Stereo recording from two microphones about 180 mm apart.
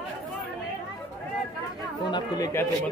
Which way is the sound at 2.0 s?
25° left (ahead or behind).